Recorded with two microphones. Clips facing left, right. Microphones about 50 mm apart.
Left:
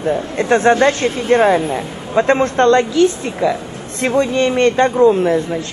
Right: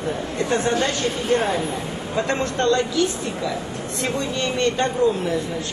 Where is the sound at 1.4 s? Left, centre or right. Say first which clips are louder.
Left 9 dB; left.